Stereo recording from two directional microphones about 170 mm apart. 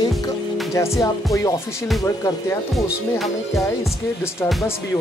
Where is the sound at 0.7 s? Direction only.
15° left (ahead or behind).